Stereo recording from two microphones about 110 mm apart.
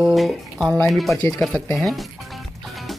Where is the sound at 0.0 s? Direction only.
Centre (ahead or behind).